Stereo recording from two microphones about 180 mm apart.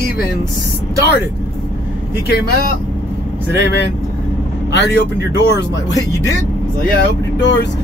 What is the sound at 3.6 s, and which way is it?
Speech, 70° left (ahead or behind).